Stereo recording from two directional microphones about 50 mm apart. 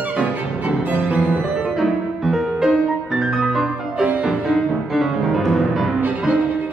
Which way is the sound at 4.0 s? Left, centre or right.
Right.